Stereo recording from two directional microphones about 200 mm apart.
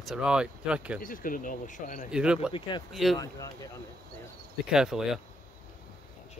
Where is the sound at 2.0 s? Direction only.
5° right (ahead or behind).